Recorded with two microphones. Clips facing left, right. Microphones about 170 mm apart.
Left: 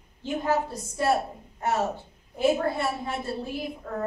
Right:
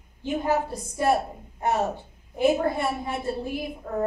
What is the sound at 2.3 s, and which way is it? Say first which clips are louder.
A woman's voice: right 2 dB; 15° right (ahead or behind).